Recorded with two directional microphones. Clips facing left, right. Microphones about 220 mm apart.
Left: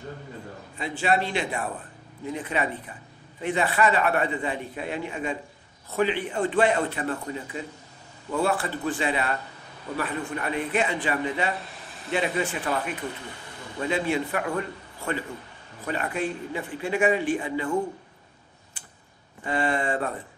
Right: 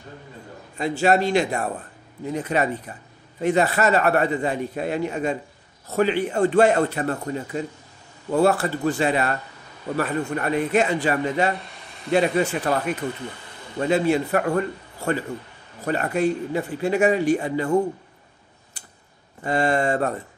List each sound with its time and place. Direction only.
0.7 s a man's voice: 40° right (ahead or behind)
11.5 s a sound: centre (ahead or behind)
12.1 s a man's voice: 40° right (ahead or behind)
13.7 s a man's voice: 40° right (ahead or behind)
15.8 s a man's voice: 45° right (ahead or behind)
18.8 s tick-tock: 40° right (ahead or behind)
19.4 s a man's voice: 40° right (ahead or behind)